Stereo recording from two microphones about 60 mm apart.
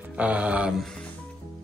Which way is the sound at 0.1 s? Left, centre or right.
Right.